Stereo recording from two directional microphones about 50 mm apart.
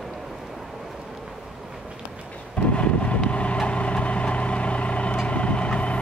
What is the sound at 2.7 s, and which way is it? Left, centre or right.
Vehicle, left.